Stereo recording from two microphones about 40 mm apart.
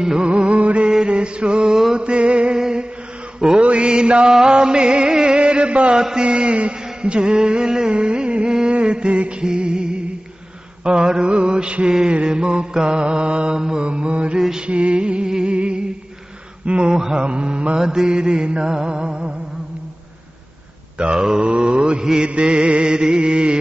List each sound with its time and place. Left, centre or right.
0.0 s mantra: centre
0.3 s music: right
0.9 s mantra: right
2.0 s music: right
2.6 s a sound: right
3.3 s mantra: right
5.9 s mantra: centre
8.5 s music: right
10.8 s mantra: right
16.6 s a sound: right
16.9 s mantra: centre
21.2 s mantra: centre